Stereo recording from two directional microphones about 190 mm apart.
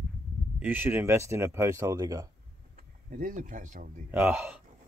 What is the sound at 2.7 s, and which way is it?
Speech, 45° right (ahead or behind).